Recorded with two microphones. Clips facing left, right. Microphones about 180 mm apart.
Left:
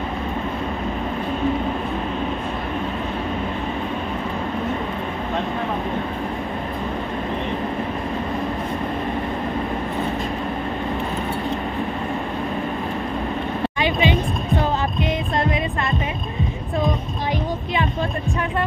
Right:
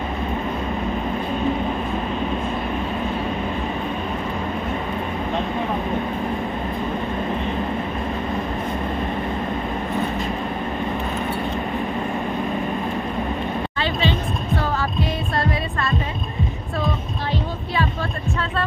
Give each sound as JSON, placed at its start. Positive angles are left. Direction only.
{"t": 13.7, "sound": "music", "side_deg": 15}
{"t": 16.8, "sound": "heart sounds", "side_deg": 20}